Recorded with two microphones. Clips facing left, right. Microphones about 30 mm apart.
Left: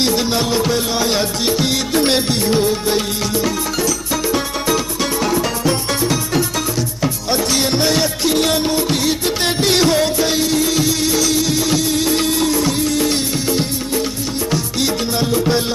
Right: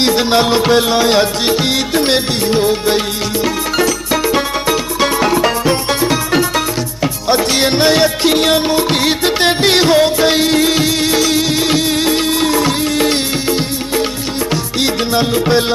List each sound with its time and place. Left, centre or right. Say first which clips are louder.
0.0 s music: right 5 dB; right
2.0 s music: even; right